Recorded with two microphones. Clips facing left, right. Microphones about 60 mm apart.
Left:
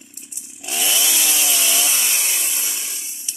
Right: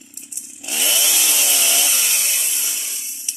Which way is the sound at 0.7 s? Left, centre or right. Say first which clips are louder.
Even; centre.